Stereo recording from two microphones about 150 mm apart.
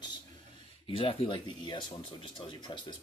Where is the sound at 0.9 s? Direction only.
40° left (ahead or behind).